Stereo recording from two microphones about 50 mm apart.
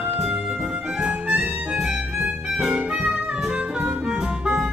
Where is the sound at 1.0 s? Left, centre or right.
Right.